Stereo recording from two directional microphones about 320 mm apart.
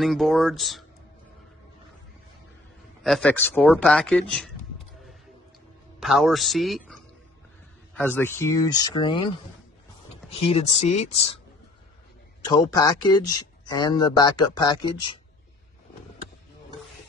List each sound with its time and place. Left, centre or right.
0.0 s speech: centre
3.0 s speech: centre
5.9 s speech: centre
10.3 s speech: centre
12.4 s speech: centre